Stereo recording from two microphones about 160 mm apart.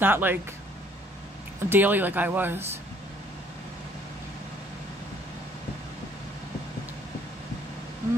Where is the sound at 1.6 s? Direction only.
10° right (ahead or behind).